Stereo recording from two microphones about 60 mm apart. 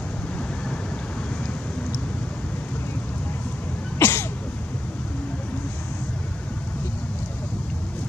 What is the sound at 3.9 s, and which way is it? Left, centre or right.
Cough, left.